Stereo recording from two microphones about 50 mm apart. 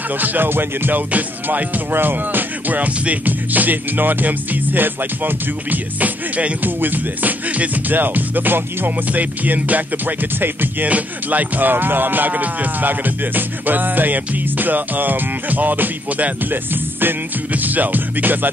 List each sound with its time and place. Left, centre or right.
0.2 s music: right